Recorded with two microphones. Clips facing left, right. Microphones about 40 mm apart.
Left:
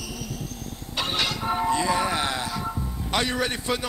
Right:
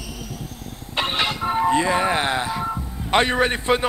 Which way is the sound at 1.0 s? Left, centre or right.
Right.